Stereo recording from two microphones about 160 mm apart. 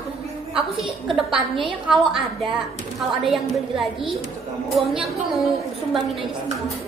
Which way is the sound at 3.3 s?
Centre (ahead or behind).